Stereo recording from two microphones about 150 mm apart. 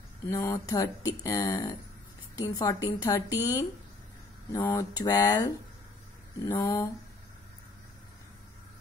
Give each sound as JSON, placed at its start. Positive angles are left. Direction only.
{"t": 0.3, "sound": "speech", "side_deg": 25}
{"t": 3.3, "sound": "speech", "side_deg": -15}
{"t": 4.5, "sound": "speech", "side_deg": 25}